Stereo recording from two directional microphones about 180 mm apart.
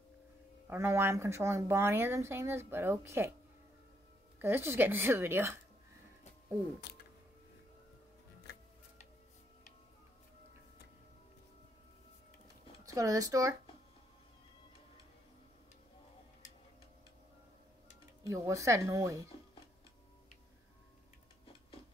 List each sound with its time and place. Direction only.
0.7 s speech: 15° right (ahead or behind)
4.4 s speech: 10° right (ahead or behind)
6.9 s a sound: 65° left (ahead or behind)
12.8 s speech: 20° right (ahead or behind)
18.2 s speech: 15° right (ahead or behind)